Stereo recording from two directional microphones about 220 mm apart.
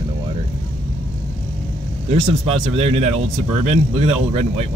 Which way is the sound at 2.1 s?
25° right (ahead or behind).